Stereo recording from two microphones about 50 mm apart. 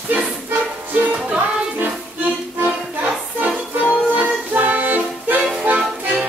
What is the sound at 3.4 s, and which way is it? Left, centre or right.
Music, right.